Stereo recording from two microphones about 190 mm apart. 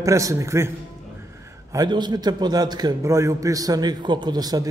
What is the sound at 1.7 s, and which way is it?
A man's voice, 25° right (ahead or behind).